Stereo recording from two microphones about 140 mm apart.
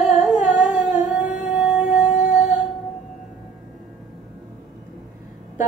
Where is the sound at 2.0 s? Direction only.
60° left (ahead or behind).